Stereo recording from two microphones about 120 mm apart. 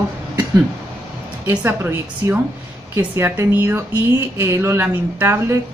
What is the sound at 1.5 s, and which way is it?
A woman's voice, 15° right (ahead or behind).